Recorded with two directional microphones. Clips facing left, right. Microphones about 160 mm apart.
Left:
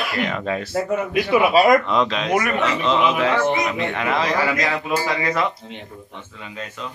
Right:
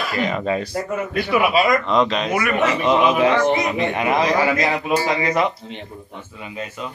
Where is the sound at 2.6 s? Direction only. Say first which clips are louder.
Right 2 dB; 15° right (ahead or behind).